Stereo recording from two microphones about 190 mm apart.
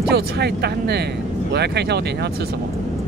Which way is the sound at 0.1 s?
60° right (ahead or behind).